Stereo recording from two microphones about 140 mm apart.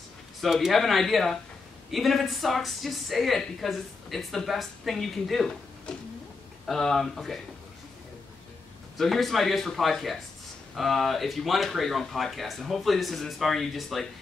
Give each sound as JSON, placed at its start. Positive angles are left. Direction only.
{"t": 0.4, "sound": "a woman's voice", "side_deg": 0}
{"t": 8.9, "sound": "a woman's voice", "side_deg": 0}